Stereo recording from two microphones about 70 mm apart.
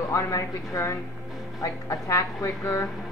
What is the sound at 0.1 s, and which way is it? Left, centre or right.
Speech, left.